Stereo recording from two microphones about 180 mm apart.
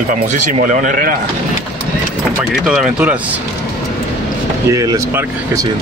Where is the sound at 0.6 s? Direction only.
45° right (ahead or behind).